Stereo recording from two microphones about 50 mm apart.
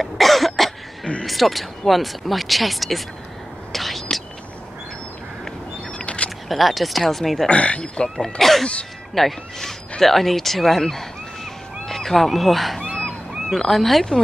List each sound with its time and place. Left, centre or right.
0.0 s cough: centre
1.2 s speech: centre
3.7 s whispering: centre
5.9 s a sound: left
6.5 s speech: centre
7.4 s speech: left
8.2 s speech: centre